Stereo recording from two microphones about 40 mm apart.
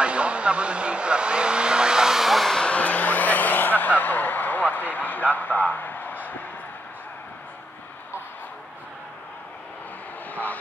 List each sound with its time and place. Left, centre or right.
0.0 s vehicle: right; by 2.4 s centre
2.6 s vehicle: left
4.0 s a sound: left
10.3 s speech: left